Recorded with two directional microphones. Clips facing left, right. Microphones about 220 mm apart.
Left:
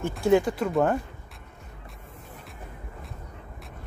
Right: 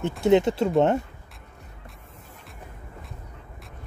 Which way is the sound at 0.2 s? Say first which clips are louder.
Right 2 dB; 20° right (ahead or behind).